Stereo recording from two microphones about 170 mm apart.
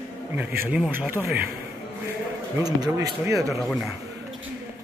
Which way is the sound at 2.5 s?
20° right (ahead or behind).